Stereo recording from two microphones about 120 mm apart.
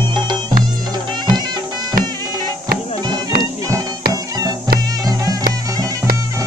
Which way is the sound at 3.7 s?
30° right (ahead or behind).